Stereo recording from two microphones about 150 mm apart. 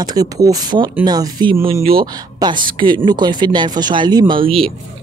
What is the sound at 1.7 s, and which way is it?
Speech, 40° right (ahead or behind).